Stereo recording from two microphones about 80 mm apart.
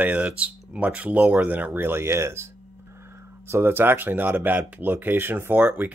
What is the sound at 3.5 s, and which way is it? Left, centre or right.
Speech, right.